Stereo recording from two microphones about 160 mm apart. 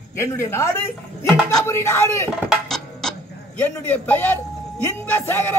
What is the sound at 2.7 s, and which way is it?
Music, 5° left (ahead or behind).